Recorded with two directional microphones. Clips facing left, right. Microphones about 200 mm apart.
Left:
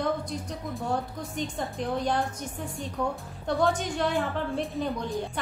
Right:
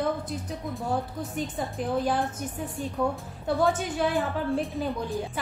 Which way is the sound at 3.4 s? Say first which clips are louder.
Right 1 dB; 5° right (ahead or behind).